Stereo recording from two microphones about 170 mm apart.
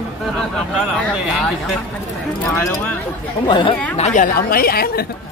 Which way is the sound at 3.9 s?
45° left (ahead or behind).